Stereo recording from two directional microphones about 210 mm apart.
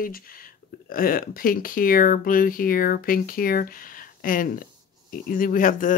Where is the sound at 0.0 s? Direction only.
45° left (ahead or behind).